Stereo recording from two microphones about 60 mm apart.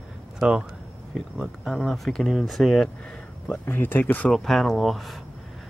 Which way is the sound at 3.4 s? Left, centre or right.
Left.